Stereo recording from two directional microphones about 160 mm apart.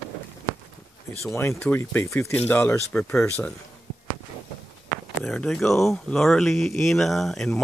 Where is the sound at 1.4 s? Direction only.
10° left (ahead or behind).